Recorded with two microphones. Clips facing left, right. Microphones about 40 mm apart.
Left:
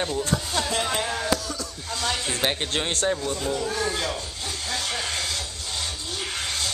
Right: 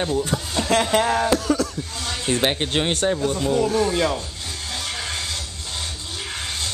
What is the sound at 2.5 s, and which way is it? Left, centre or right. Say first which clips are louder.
Speech: right 4 dB; centre.